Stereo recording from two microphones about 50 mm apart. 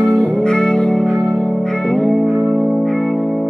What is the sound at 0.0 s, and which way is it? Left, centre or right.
Music, centre.